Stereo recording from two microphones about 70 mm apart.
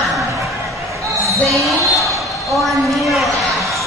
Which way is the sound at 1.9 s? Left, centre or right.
Right.